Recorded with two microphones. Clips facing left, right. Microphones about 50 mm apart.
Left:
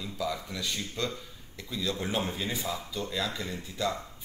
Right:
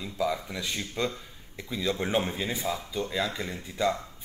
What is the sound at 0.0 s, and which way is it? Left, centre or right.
Speech, right.